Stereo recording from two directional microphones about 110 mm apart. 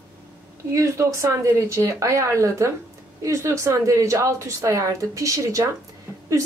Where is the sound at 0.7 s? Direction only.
25° right (ahead or behind).